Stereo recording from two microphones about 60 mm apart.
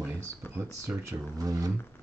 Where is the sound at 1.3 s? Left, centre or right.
Right.